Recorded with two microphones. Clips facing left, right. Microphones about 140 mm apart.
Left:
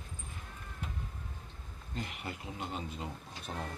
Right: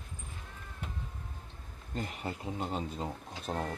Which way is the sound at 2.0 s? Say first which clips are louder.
Right 4 dB; 35° right (ahead or behind).